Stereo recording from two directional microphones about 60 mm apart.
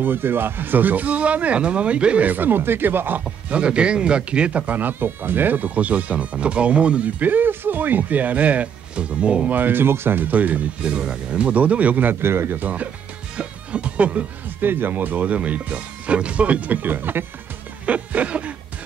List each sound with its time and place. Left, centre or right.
0.0 s speech: right
3.4 s speech: centre
9.6 s speech: right
10.9 s speech: centre
13.4 s music: centre
14.6 s speech: right
17.8 s speech: right